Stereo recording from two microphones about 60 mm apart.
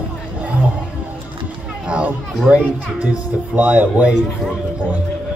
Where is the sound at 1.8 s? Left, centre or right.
Centre.